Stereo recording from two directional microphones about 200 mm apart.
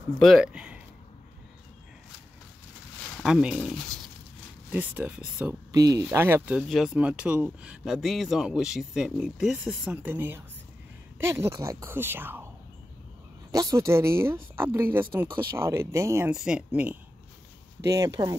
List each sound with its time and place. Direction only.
0.2 s speech: centre (ahead or behind)
3.2 s a woman's voice: centre (ahead or behind)
13.5 s a woman's voice: 15° right (ahead or behind)